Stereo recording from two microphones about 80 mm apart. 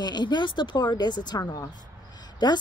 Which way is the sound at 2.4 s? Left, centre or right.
Left.